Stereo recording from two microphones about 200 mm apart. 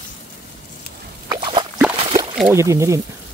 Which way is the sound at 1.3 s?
25° right (ahead or behind).